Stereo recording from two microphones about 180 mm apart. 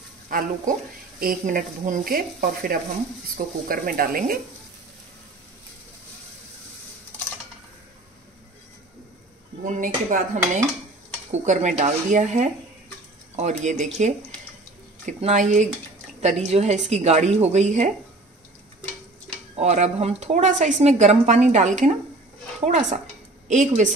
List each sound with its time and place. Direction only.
0.3 s speech: 50° right (ahead or behind)
9.7 s a woman's voice: 45° right (ahead or behind)
19.5 s a woman's voice: 40° right (ahead or behind)